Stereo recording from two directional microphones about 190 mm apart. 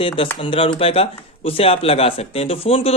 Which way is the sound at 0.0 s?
30° left (ahead or behind).